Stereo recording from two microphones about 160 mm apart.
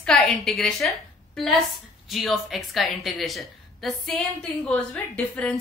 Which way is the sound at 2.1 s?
Centre (ahead or behind).